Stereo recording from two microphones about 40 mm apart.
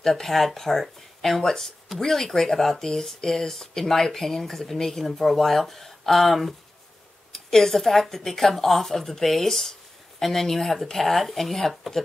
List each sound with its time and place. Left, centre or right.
0.0 s a woman's voice: centre